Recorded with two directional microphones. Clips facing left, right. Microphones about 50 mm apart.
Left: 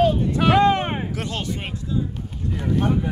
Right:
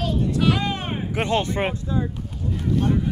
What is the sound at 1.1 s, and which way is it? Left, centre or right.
Speech, right.